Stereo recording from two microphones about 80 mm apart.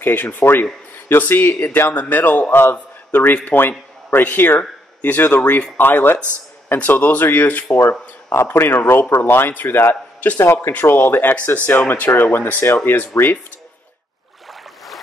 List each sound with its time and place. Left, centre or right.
0.0 s speech: left